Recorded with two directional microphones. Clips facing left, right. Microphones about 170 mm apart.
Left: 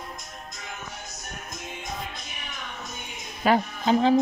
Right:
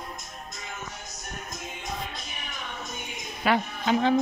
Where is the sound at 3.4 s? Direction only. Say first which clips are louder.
Left 3 dB; 40° left (ahead or behind).